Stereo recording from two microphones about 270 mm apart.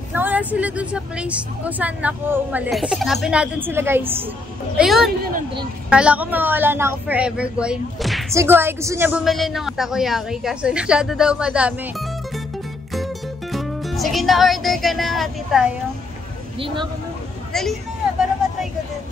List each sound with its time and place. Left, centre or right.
0.1 s a woman's voice: centre
12.9 s speech: centre
16.5 s speech: centre
17.5 s a sound: centre